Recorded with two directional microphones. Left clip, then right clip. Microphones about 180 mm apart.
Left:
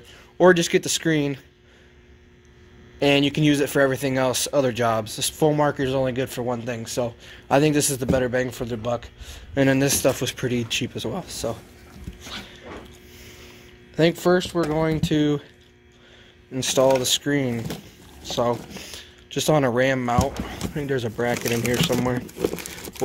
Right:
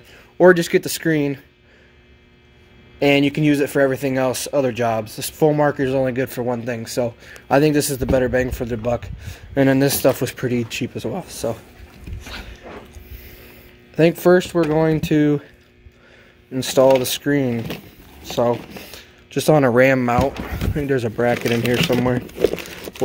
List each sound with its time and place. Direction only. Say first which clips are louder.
0.4 s speech: right 3 dB; 30° right (ahead or behind)
3.0 s a man's voice: right 3 dB; 30° right (ahead or behind)
12.2 s dog: right 1 dB; 35° right (ahead or behind)
13.9 s speech: right 5 dB; 35° right (ahead or behind)
16.5 s a man's voice: right 5 dB; 35° right (ahead or behind)
20.7 s a man's voice: right 5 dB; 35° right (ahead or behind)
22.6 s crumpling: right 4 dB; 5° right (ahead or behind)